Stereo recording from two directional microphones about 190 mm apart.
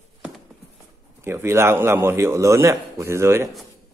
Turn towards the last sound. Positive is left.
turn(degrees=-15)  # may be behind; listen again after turning